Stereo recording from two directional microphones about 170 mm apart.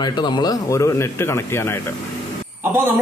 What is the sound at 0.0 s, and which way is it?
A man's voice, 25° left (ahead or behind).